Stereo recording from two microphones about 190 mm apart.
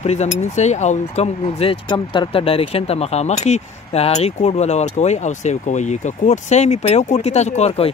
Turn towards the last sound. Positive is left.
turn(degrees=30)  # may be behind; listen again after turning